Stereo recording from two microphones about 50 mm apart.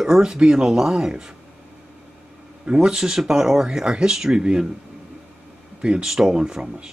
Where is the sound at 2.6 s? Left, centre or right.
Centre.